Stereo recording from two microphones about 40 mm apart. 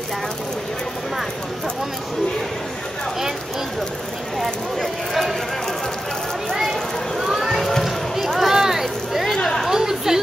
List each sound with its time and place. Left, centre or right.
4.4 s speech: centre
6.5 s a sound: centre
9.4 s chatter: centre
9.7 s chatter: centre